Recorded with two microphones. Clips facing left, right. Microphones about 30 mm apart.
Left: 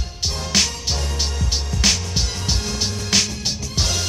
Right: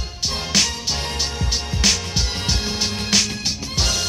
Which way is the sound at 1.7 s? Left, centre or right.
Right.